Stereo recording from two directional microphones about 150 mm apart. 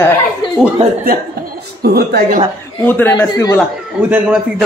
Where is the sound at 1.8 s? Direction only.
90° right.